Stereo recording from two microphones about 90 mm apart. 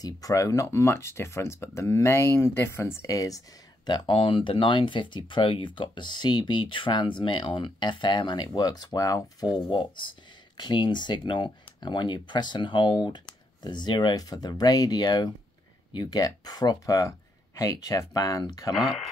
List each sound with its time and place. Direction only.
0.0 s speech: 40° left (ahead or behind); by 8.5 s 60° left (ahead or behind)
8.5 s speech: 45° left (ahead or behind)
9.8 s speech: 60° left (ahead or behind); by 18.7 s 40° left (ahead or behind)
18.7 s speech: centre (ahead or behind)